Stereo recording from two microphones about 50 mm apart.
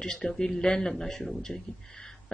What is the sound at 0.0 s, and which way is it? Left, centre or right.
A man's voice, centre.